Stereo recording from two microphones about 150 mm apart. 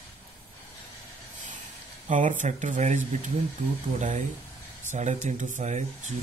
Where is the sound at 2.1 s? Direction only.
60° right (ahead or behind).